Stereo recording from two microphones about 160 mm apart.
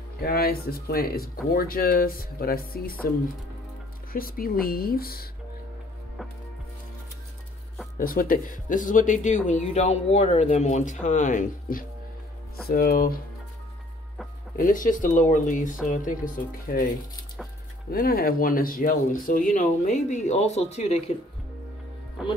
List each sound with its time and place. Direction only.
0.2 s speech: 70° left (ahead or behind)
4.1 s speech: 65° left (ahead or behind)
8.0 s speech: 65° left (ahead or behind)
12.6 s speech: 70° left (ahead or behind)
14.6 s speech: 55° left (ahead or behind)
17.9 s speech: 65° left (ahead or behind); by 21.0 s 40° left (ahead or behind)